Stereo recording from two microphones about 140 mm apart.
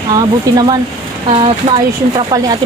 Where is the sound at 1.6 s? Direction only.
45° right (ahead or behind).